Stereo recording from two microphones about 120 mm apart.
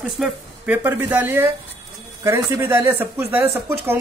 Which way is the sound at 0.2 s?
5° right (ahead or behind).